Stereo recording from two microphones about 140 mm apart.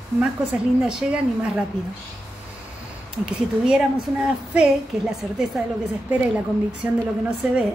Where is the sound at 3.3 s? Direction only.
5° right (ahead or behind).